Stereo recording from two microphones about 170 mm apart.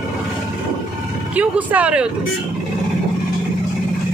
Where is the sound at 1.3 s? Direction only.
10° right (ahead or behind).